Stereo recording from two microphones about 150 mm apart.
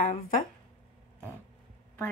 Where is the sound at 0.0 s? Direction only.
60° left (ahead or behind).